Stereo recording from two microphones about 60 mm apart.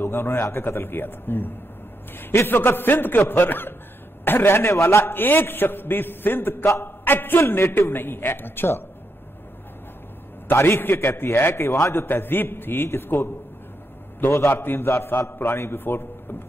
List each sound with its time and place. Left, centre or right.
0.0 s a man's voice: left
10.5 s a man's voice: left